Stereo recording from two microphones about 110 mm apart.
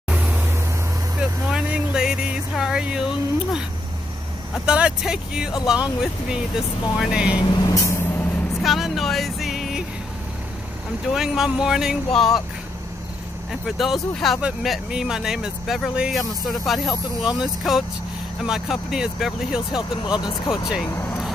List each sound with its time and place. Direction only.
0.1 s vehicle: 10° right (ahead or behind)
2.5 s speech: 5° right (ahead or behind)
4.6 s speech: 10° right (ahead or behind)
7.3 s vehicle: 40° left (ahead or behind); by 8.3 s 20° left (ahead or behind)
8.6 s music: centre (ahead or behind)
11.1 s speech: 5° right (ahead or behind)
13.5 s speech: centre (ahead or behind)
19.8 s speech: 50° left (ahead or behind)
20.8 s vehicle: 20° left (ahead or behind)